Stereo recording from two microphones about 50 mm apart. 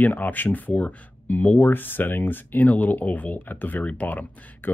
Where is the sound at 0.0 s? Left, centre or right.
Left.